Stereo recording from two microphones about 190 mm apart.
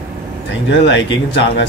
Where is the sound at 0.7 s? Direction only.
70° left (ahead or behind).